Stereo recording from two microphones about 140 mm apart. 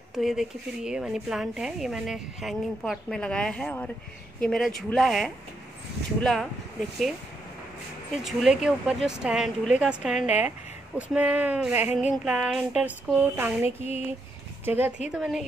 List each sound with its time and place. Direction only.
0.1 s a woman's voice: centre (ahead or behind)
8.2 s a woman's voice: centre (ahead or behind)
11.0 s a sound: 10° right (ahead or behind)
13.8 s a sound: 50° left (ahead or behind)
14.6 s speech: 15° right (ahead or behind)
15.0 s a woman's voice: 5° right (ahead or behind)